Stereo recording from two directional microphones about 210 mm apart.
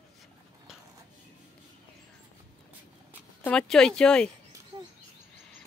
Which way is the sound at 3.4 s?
5° left (ahead or behind).